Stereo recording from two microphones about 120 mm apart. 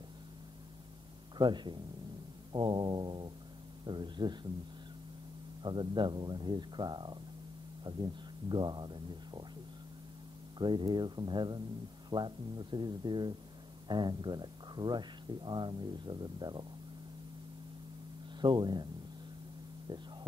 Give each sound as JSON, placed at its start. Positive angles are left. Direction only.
{"t": 1.4, "sound": "speech", "side_deg": -40}
{"t": 5.6, "sound": "speech", "side_deg": -40}
{"t": 10.6, "sound": "speech", "side_deg": -40}
{"t": 18.4, "sound": "speech", "side_deg": -40}